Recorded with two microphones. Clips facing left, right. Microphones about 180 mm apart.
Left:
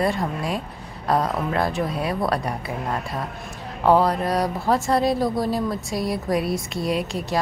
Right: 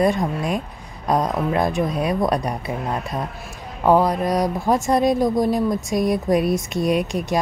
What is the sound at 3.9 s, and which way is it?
A woman's voice, 15° right (ahead or behind).